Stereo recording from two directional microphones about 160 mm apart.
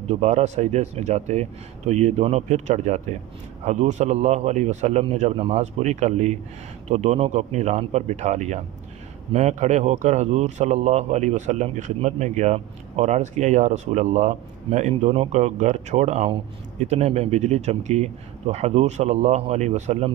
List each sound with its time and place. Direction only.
0.1 s a man's voice: 45° right (ahead or behind)